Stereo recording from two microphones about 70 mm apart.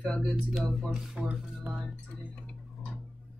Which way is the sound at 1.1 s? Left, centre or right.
Centre.